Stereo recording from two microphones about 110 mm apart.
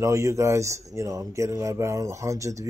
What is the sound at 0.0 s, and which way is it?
Speech, 25° right (ahead or behind).